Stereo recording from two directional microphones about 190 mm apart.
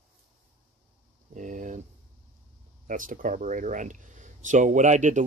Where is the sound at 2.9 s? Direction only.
45° right (ahead or behind).